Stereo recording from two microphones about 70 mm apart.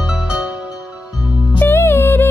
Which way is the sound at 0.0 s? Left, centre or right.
Centre.